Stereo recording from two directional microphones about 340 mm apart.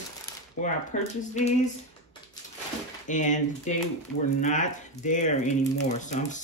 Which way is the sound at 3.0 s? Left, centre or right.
Left.